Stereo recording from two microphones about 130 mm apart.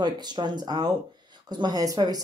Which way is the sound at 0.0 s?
35° right (ahead or behind).